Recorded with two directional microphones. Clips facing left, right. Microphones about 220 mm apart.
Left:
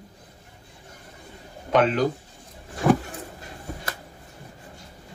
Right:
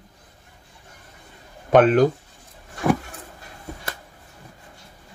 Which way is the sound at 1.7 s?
50° right (ahead or behind).